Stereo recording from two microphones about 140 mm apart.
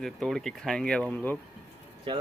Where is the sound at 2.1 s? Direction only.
35° right (ahead or behind).